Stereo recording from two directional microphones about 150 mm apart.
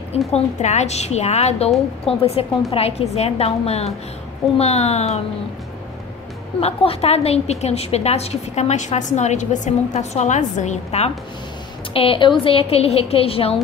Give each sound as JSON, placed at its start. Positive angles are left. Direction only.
{"t": 0.3, "sound": "a woman's voice", "side_deg": 50}
{"t": 6.6, "sound": "a woman's voice", "side_deg": 40}
{"t": 11.9, "sound": "a woman's voice", "side_deg": 35}